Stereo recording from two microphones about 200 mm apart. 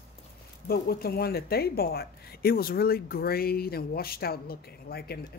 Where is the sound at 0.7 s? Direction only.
50° left (ahead or behind).